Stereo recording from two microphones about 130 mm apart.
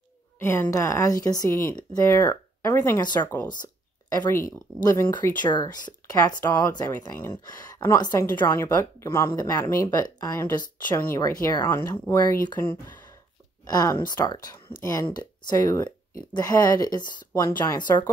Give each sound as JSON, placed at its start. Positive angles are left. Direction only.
{"t": 0.4, "sound": "a woman's voice", "side_deg": 20}
{"t": 3.4, "sound": "a sound", "side_deg": 30}
{"t": 4.3, "sound": "speech", "side_deg": 25}
{"t": 11.0, "sound": "speech", "side_deg": 20}
{"t": 13.7, "sound": "speech", "side_deg": 30}
{"t": 17.7, "sound": "speech", "side_deg": 35}